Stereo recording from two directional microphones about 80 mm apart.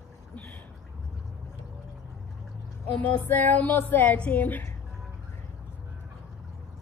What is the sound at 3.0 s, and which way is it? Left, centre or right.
Speech, left.